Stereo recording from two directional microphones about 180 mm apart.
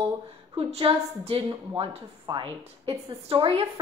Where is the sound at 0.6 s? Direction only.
30° right (ahead or behind).